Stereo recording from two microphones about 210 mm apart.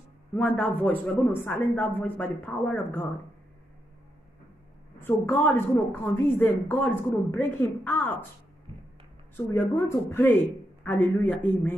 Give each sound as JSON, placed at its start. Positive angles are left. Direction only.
{"t": 0.3, "sound": "a woman's voice", "side_deg": 5}
{"t": 4.9, "sound": "a woman's voice", "side_deg": 10}
{"t": 8.7, "sound": "music", "side_deg": -25}
{"t": 9.5, "sound": "a woman's voice", "side_deg": 10}